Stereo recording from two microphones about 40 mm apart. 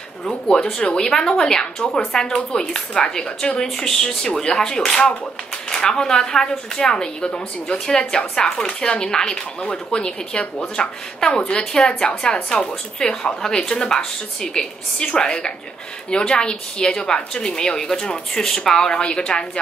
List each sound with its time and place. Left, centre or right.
0.2 s a woman's voice: centre
3.7 s a woman's voice: centre